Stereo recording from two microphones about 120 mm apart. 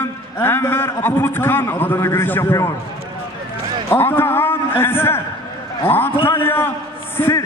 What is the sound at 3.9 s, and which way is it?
A man's voice, 20° left (ahead or behind).